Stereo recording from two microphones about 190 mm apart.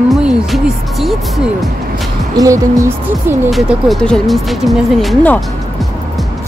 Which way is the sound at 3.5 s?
Centre (ahead or behind).